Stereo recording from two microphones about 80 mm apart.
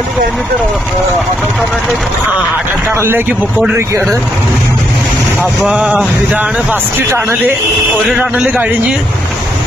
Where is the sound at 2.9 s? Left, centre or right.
Right.